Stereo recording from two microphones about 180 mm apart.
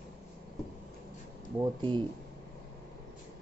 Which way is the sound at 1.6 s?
25° right (ahead or behind).